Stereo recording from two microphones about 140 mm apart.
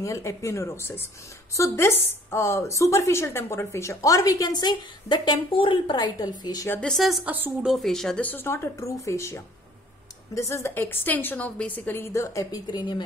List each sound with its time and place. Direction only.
0.0 s a woman's voice: 20° left (ahead or behind)
6.7 s speech: 5° left (ahead or behind)
7.2 s speech: 10° right (ahead or behind)
7.7 s a woman's voice: centre (ahead or behind); by 13.0 s 30° left (ahead or behind)